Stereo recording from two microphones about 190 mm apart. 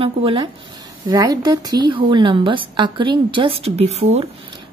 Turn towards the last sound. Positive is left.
turn(degrees=-35)  # may be behind; listen again after turning